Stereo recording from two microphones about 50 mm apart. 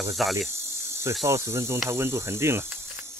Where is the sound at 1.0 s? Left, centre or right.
Right.